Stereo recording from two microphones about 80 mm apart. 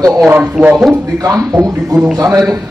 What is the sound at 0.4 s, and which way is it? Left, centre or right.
Speech, centre.